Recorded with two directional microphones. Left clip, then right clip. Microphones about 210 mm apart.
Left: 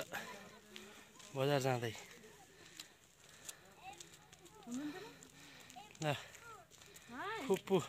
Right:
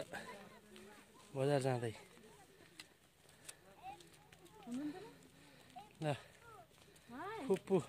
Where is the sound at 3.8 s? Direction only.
10° right (ahead or behind).